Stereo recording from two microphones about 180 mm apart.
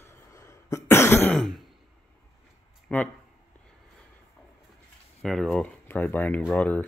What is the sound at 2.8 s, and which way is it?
Speech, 5° left (ahead or behind).